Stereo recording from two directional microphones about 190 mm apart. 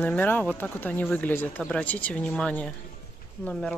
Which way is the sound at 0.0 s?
10° left (ahead or behind).